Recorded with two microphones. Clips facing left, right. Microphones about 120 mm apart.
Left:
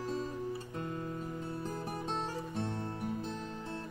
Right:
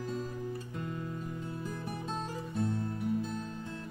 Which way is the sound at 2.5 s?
25° left (ahead or behind).